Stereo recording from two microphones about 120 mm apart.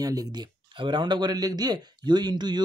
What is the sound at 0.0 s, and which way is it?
Speech, 30° right (ahead or behind).